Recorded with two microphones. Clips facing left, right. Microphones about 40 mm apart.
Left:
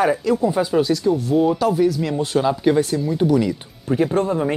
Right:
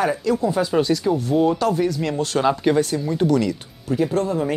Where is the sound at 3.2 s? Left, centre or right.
Centre.